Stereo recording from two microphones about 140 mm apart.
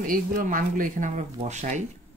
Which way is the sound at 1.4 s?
55° right (ahead or behind).